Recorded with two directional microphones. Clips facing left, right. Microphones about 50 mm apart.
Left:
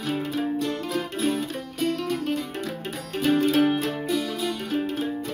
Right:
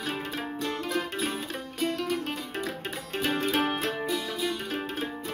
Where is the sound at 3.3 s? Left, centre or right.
Right.